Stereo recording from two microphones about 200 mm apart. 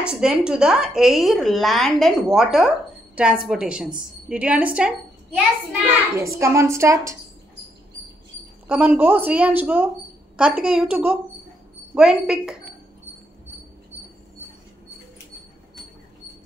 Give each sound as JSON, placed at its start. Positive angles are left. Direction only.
{"t": 0.0, "sound": "a woman's voice", "side_deg": -5}
{"t": 8.6, "sound": "a woman's voice", "side_deg": -5}